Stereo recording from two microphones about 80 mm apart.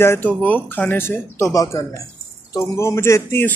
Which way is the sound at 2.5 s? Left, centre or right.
Left.